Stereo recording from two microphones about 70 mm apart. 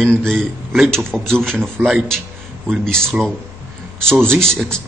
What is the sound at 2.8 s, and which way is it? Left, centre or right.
A man's voice, centre.